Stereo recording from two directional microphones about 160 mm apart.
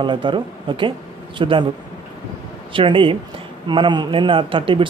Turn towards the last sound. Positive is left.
turn(degrees=-30)  # may be behind; listen again after turning